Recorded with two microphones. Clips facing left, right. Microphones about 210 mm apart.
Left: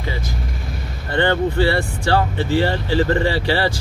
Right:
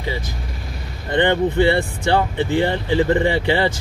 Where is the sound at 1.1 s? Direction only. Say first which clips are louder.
Right 1 dB; 20° right (ahead or behind).